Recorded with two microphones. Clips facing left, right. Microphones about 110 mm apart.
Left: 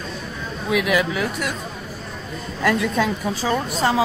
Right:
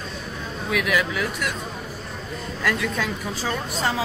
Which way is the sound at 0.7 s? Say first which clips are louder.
Left 4 dB; 20° left (ahead or behind).